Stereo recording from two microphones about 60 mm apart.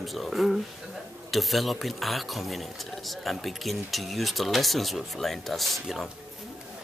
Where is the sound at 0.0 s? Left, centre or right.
Centre.